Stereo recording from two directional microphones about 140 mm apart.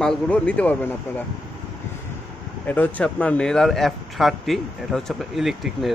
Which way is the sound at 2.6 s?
10° left (ahead or behind).